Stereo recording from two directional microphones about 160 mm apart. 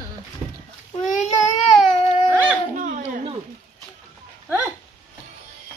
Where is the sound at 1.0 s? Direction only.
50° left (ahead or behind).